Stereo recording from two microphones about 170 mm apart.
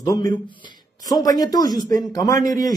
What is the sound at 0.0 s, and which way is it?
Speech, 20° left (ahead or behind).